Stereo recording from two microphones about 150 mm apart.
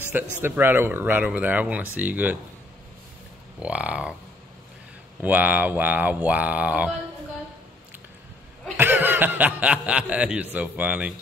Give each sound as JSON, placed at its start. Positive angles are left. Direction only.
{"t": 0.0, "sound": "speech", "side_deg": -15}
{"t": 3.5, "sound": "speech", "side_deg": -10}
{"t": 5.2, "sound": "speech", "side_deg": -10}
{"t": 8.7, "sound": "speech", "side_deg": -15}